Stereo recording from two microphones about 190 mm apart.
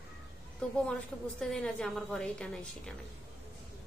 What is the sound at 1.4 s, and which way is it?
A woman's voice, 5° left (ahead or behind).